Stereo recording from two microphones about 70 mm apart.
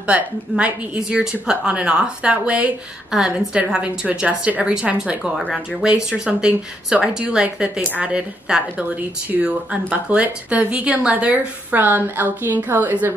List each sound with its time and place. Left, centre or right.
0.0 s a woman's voice: centre